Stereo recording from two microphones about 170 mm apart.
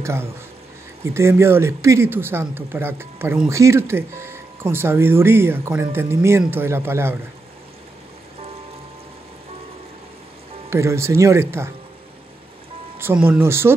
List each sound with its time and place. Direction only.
0.0 s speech: 15° right (ahead or behind)
10.7 s speech: 15° right (ahead or behind)
13.0 s speech: 10° right (ahead or behind)